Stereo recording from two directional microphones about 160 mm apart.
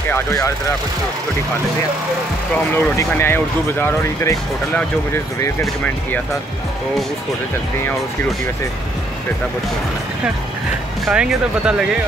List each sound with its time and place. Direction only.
0.1 s speech: 20° left (ahead or behind)
2.5 s speech: 15° left (ahead or behind)
11.1 s speech: 5° right (ahead or behind)